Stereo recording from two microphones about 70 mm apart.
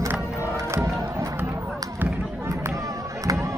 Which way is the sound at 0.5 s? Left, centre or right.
Right.